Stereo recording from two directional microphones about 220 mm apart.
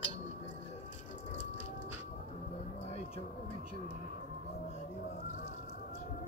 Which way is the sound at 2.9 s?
30° left (ahead or behind).